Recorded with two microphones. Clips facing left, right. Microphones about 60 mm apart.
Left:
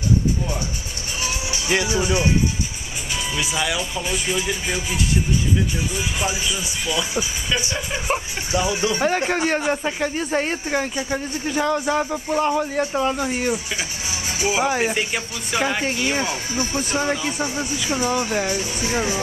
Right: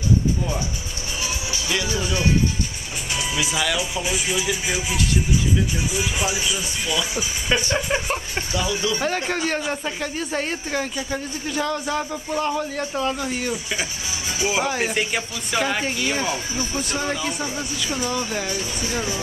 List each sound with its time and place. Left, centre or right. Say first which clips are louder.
1.2 s music: left 3 dB; left
1.9 s speech: left 3 dB; left
3.1 s speech: even; centre
5.9 s speech: right 2 dB; centre
8.1 s speech: left 3 dB; left